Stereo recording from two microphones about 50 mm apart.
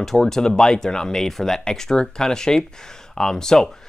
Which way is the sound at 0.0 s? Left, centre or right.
Centre.